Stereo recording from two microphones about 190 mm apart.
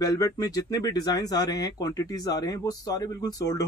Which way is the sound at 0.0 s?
20° left (ahead or behind).